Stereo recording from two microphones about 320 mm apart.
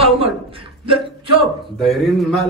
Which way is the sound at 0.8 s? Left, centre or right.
Centre.